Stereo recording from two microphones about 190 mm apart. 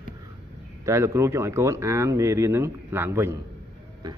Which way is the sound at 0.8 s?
15° right (ahead or behind).